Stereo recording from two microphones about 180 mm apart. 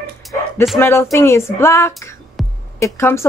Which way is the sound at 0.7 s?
15° left (ahead or behind).